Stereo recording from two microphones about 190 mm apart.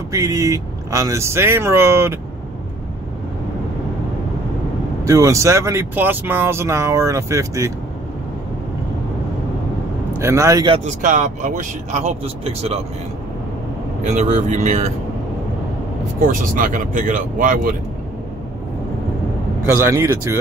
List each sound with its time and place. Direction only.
0.1 s speech: 15° right (ahead or behind)
5.0 s speech: 15° right (ahead or behind)
10.1 s speech: 15° right (ahead or behind)
10.7 s speech: 40° right (ahead or behind)
14.0 s speech: 35° right (ahead or behind)
16.2 s speech: 45° right (ahead or behind)
19.6 s speech: 10° right (ahead or behind)